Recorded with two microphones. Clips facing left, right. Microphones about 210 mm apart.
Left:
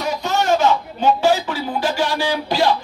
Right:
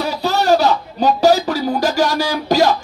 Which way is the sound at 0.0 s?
35° right (ahead or behind).